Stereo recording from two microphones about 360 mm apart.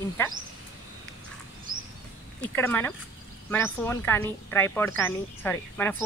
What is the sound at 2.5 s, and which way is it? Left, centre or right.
Speech, centre.